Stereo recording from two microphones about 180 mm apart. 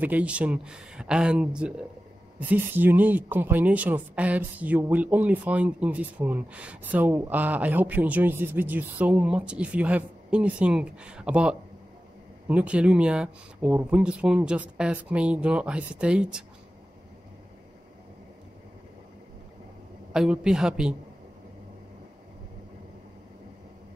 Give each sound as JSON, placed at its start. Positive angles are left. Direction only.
{"t": 0.0, "sound": "speech", "side_deg": -10}
{"t": 20.1, "sound": "speech", "side_deg": -5}